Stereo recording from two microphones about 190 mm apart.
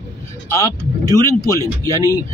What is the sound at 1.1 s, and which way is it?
Speech, 15° left (ahead or behind).